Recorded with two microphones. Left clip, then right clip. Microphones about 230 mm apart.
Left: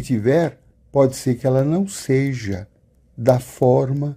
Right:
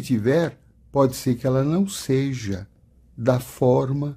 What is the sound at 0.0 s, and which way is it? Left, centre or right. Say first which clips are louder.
Speech: left 3 dB; centre.